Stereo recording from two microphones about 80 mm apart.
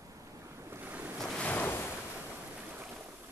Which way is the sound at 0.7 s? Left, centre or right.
Right.